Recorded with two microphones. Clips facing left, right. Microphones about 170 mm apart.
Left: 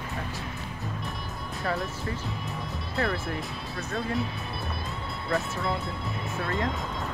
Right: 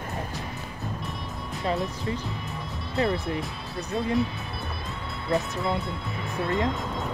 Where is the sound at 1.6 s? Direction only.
20° right (ahead or behind).